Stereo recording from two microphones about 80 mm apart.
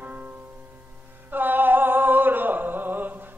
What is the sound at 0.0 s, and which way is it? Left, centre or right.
Music, right.